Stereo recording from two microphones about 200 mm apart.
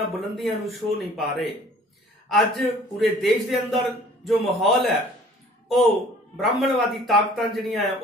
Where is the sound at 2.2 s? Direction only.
Centre (ahead or behind).